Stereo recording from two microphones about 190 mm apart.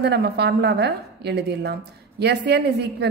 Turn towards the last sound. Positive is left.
turn(degrees=-60)  # may be behind; listen again after turning